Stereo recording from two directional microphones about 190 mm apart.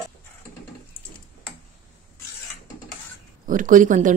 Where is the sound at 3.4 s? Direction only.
45° right (ahead or behind).